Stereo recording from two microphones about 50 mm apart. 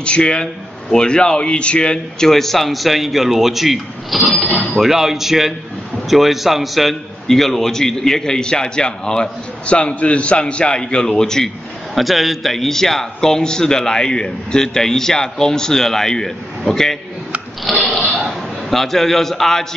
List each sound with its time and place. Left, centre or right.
0.0 s a man's voice: left
11.9 s a man's voice: centre
17.7 s a man's voice: centre